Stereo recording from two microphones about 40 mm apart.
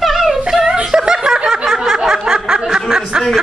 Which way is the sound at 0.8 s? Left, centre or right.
Centre.